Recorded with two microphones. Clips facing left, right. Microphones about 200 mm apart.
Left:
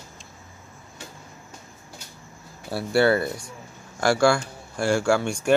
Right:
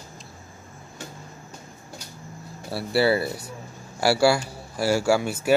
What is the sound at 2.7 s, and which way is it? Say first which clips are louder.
Speech: left 1 dB; centre (ahead or behind).